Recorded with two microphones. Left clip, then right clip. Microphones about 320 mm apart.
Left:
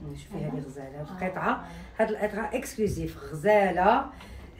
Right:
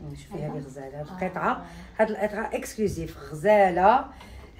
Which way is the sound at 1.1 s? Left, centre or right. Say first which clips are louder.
Right 2 dB; right.